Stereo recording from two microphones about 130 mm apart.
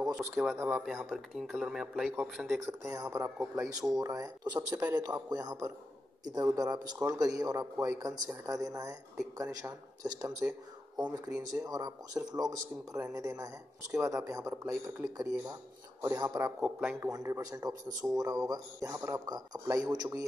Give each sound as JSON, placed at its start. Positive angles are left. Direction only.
{"t": 0.0, "sound": "a sound", "side_deg": -10}
{"t": 0.3, "sound": "speech", "side_deg": 0}
{"t": 2.8, "sound": "speech", "side_deg": -25}
{"t": 16.6, "sound": "a man's voice", "side_deg": -10}
{"t": 17.1, "sound": "speech", "side_deg": -25}